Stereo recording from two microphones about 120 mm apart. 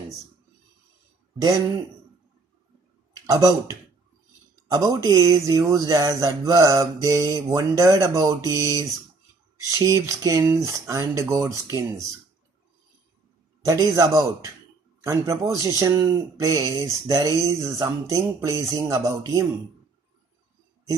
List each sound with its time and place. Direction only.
3.3 s speech: 30° right (ahead or behind)
9.7 s speech: 25° right (ahead or behind)
13.7 s speech: 25° right (ahead or behind)